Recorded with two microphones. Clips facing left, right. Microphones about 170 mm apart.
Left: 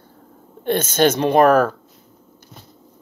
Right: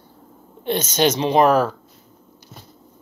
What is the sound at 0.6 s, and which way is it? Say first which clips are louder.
Speech: left 2 dB; 55° left (ahead or behind).